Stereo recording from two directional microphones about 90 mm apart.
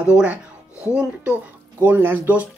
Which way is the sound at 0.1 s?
10° right (ahead or behind).